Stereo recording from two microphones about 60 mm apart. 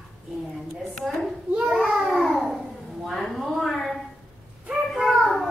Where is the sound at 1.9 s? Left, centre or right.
Centre.